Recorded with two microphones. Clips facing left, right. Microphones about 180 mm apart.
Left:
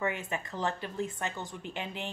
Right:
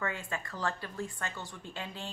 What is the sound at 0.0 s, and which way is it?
Speech, 20° left (ahead or behind).